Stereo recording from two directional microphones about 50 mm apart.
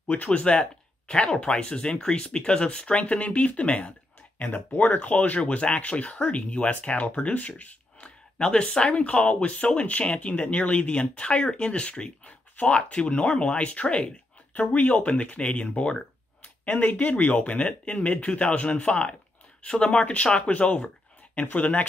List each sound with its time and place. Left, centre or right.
0.1 s speech: left
16.6 s speech: left
17.6 s speech: left